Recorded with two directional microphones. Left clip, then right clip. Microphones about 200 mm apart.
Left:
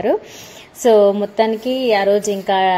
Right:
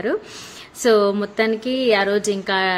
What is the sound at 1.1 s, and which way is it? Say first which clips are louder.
A woman's voice: left 4 dB; 5° right (ahead or behind).